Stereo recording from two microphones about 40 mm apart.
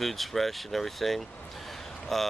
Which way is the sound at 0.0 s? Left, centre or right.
Centre.